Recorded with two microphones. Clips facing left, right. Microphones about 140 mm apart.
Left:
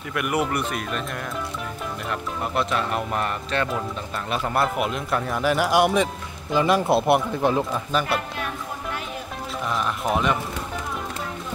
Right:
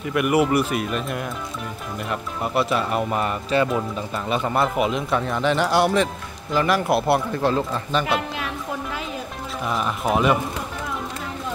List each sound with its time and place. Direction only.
0.1 s speech: 5° right (ahead or behind); by 7.8 s 15° left (ahead or behind)
9.7 s speech: centre (ahead or behind)